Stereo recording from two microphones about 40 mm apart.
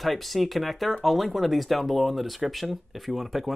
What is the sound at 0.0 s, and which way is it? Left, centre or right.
Speech, centre.